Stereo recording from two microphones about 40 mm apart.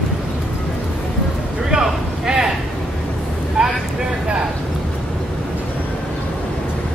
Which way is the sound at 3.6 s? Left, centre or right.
Right.